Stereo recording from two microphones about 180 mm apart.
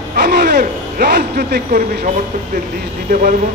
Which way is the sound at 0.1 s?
65° right (ahead or behind).